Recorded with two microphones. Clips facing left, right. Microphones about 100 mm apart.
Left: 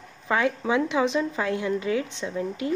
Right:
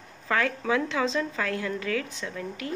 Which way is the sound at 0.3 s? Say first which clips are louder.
Left 2 dB; 15° left (ahead or behind).